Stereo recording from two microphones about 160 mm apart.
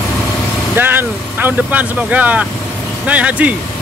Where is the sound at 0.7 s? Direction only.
10° right (ahead or behind).